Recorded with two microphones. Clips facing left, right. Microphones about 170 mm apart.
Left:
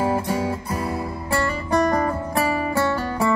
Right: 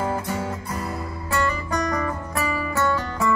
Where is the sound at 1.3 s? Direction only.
30° left (ahead or behind).